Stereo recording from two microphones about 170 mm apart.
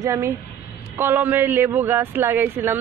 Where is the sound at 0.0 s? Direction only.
15° right (ahead or behind).